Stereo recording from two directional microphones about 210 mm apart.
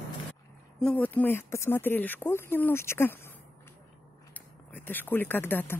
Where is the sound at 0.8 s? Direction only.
10° left (ahead or behind).